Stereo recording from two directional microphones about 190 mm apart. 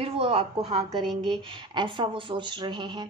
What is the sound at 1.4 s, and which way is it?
A woman's voice, 25° right (ahead or behind).